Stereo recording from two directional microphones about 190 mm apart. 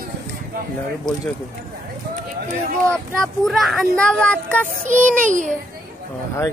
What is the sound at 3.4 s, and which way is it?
Speech, centre (ahead or behind).